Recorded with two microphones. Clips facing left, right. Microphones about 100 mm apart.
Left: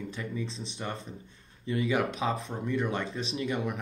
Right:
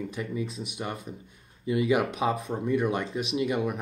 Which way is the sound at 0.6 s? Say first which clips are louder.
Right 2 dB; 10° right (ahead or behind).